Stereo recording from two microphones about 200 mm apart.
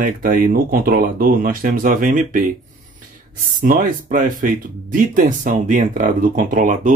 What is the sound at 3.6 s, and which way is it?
Speech, 45° right (ahead or behind).